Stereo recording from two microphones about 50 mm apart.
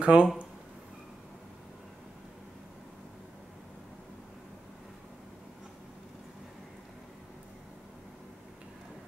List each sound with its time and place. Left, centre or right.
0.0 s speech: right